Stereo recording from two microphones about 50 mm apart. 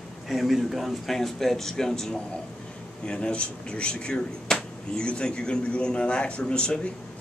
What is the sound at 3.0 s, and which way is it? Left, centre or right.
A man's voice, left.